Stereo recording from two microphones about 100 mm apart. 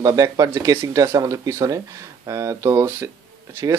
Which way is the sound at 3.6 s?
35° right (ahead or behind).